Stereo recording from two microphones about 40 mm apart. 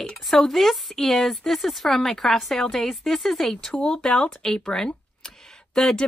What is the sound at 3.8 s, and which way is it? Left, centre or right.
Speech, left.